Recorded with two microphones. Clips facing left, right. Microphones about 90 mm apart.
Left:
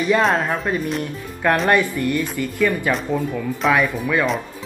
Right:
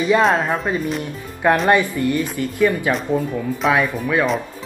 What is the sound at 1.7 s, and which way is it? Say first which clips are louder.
Speech: right 2 dB; 20° right (ahead or behind).